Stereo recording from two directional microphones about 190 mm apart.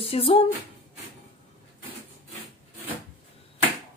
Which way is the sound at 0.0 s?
30° left (ahead or behind).